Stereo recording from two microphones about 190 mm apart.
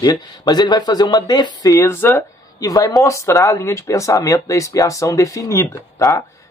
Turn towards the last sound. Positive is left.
turn(degrees=15)  # may be behind; listen again after turning